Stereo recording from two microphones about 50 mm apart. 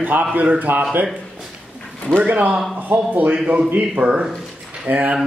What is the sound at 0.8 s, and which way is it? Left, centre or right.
Mantra, right.